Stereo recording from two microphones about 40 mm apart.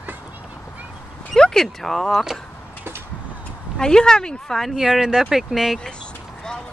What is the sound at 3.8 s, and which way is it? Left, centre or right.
Speech, centre.